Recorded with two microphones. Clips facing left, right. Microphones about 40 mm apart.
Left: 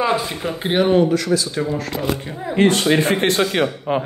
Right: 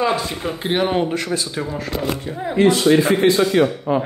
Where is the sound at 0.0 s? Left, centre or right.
Centre.